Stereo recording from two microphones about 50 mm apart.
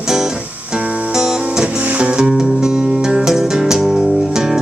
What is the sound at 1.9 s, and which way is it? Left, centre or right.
Music, right.